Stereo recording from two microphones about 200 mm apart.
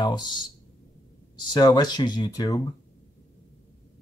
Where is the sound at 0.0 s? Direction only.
20° left (ahead or behind).